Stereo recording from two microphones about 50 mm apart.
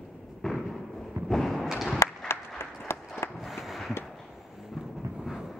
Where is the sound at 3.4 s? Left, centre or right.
Centre.